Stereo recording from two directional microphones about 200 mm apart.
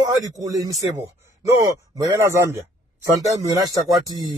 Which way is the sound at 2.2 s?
15° right (ahead or behind).